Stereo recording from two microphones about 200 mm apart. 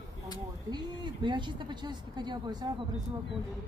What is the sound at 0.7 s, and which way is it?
Speech, 25° right (ahead or behind).